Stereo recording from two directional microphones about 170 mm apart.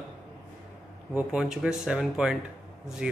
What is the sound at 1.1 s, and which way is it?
Speech, 5° right (ahead or behind).